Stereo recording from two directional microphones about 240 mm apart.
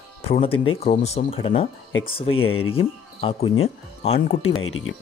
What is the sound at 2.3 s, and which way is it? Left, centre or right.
Speech, left.